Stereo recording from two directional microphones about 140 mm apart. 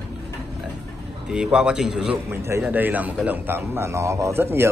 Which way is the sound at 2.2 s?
15° right (ahead or behind).